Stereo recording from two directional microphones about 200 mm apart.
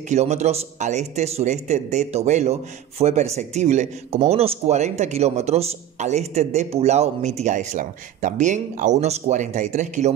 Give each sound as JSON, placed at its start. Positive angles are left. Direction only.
{"t": 0.1, "sound": "a man's voice", "side_deg": -35}